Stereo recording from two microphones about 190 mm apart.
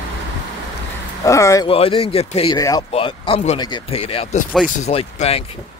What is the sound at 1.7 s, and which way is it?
Speech, 30° left (ahead or behind).